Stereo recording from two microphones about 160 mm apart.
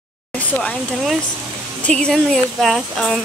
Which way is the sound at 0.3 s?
10° left (ahead or behind).